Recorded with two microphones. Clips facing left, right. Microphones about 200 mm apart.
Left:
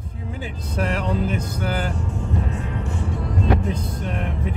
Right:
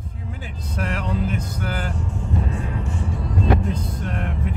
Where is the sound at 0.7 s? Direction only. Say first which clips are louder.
Left 3 dB; 25° left (ahead or behind).